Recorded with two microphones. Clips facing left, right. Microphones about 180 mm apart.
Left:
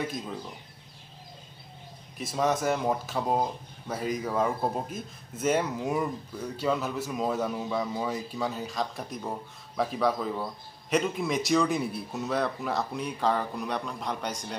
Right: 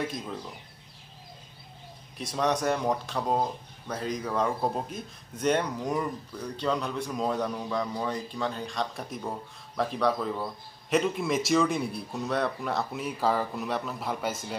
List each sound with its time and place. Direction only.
0.0 s speech: centre (ahead or behind)
2.1 s speech: 5° left (ahead or behind)